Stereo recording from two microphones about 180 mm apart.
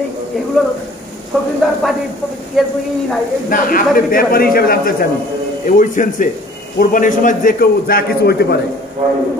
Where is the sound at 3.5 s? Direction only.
50° left (ahead or behind).